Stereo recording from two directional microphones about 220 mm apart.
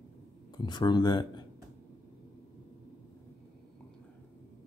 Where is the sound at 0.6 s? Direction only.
20° left (ahead or behind).